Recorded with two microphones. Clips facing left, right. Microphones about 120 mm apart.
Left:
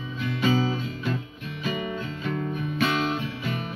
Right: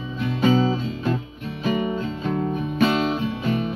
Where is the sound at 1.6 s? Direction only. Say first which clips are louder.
Right 7 dB; 35° right (ahead or behind).